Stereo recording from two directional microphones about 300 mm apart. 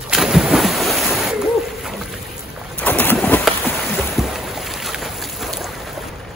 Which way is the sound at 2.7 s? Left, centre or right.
Centre.